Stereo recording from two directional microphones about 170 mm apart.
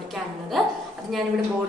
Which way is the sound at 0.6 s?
Centre (ahead or behind).